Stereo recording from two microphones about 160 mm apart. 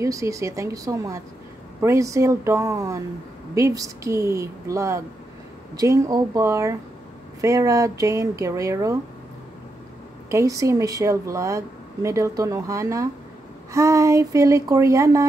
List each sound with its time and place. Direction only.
0.0 s a woman's voice: 20° right (ahead or behind)
10.3 s a woman's voice: 20° right (ahead or behind)